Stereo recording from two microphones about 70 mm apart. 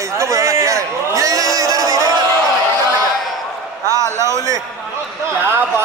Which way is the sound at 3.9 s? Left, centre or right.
Right.